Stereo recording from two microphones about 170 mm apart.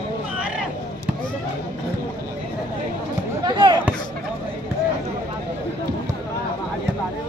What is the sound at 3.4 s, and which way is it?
Basketball bounce, 25° right (ahead or behind).